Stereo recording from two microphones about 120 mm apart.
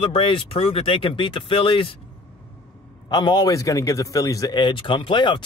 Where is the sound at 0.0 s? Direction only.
50° left (ahead or behind).